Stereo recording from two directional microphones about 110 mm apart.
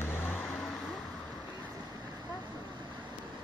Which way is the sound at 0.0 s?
20° left (ahead or behind).